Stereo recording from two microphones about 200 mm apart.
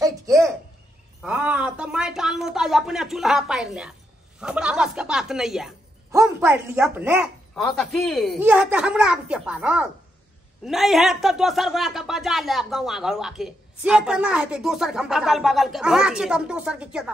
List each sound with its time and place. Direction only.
0.0 s a sound: 15° right (ahead or behind)
1.2 s speech: 5° right (ahead or behind)
6.1 s speech: 15° right (ahead or behind)
7.5 s speech: centre (ahead or behind)